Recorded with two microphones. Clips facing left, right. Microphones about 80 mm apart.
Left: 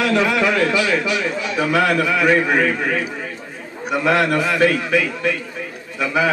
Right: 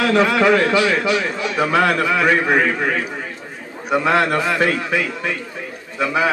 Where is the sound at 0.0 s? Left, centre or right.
Right.